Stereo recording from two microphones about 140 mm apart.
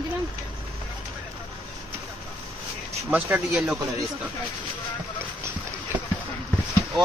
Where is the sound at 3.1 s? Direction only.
20° right (ahead or behind).